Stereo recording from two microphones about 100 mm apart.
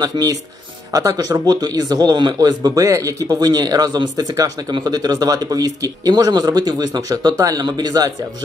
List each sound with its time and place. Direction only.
0.0 s a man's voice: 40° right (ahead or behind)